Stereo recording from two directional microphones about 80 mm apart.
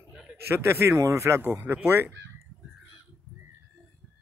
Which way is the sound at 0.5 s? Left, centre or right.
Right.